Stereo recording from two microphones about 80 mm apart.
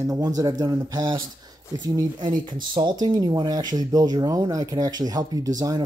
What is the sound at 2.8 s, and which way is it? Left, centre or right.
Speech, right.